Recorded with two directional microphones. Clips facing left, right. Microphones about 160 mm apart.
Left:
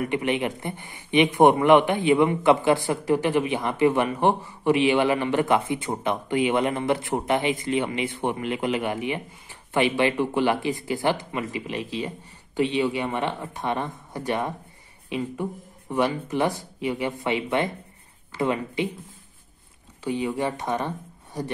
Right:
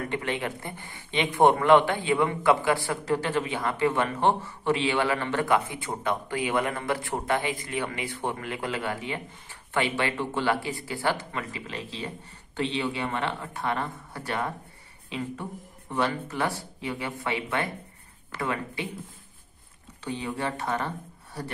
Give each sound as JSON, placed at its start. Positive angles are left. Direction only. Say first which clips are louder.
{"t": 0.0, "sound": "speech", "louder": "left 5 dB", "side_deg": 15}
{"t": 20.0, "sound": "speech", "louder": "left 6 dB", "side_deg": 10}